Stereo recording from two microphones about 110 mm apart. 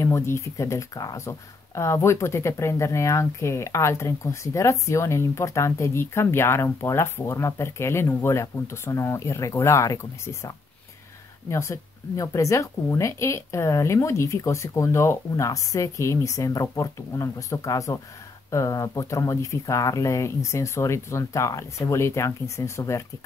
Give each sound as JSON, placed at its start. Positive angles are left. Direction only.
{"t": 0.0, "sound": "speech", "side_deg": 25}